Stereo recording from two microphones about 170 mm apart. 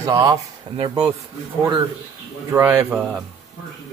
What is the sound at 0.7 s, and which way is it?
Speech, 30° right (ahead or behind).